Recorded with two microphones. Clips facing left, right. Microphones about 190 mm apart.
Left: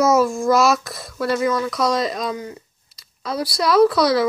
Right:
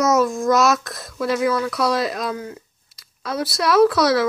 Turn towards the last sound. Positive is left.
turn(degrees=0)  # may be behind; listen again after turning